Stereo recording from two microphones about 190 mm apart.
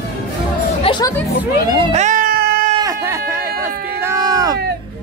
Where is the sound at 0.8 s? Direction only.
25° left (ahead or behind).